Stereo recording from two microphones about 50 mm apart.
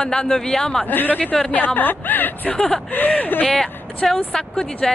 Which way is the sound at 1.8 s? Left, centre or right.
Left.